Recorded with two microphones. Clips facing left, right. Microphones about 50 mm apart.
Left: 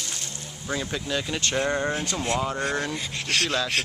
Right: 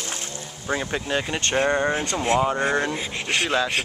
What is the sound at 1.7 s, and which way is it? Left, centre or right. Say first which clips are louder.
Speech: right 4 dB; right.